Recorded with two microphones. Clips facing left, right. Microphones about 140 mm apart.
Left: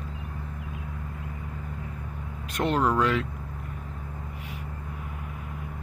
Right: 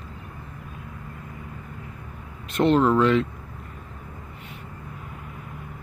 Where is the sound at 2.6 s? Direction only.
10° left (ahead or behind).